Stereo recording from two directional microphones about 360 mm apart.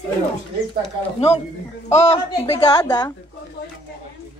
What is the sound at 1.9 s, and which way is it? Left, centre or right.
A woman's voice, centre.